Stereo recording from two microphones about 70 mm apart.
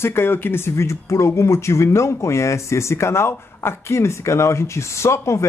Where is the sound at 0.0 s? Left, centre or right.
Left.